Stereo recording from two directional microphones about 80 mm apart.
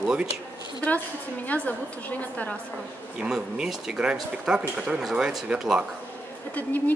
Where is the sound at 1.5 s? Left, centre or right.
Centre.